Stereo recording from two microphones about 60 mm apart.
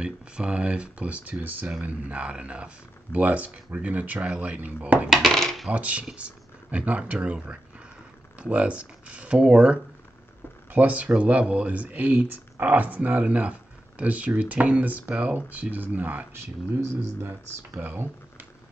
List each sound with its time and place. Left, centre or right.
0.0 s speech: centre
5.3 s coin: centre
5.7 s speech: right
17.2 s speech: right
17.8 s computer keyboard: right